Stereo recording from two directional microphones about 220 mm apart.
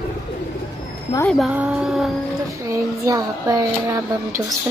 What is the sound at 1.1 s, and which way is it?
Speech, 5° left (ahead or behind).